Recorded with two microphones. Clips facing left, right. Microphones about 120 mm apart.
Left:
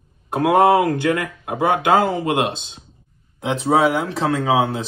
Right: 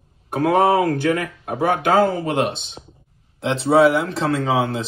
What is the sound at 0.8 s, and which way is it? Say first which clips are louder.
Speech: even; 25° left (ahead or behind).